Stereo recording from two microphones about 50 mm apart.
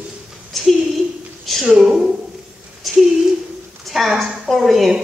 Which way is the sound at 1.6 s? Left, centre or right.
Centre.